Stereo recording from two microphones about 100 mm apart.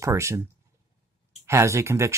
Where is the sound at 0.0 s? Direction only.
30° right (ahead or behind).